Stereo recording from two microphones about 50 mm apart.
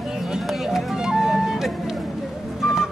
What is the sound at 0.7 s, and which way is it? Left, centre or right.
Music, centre.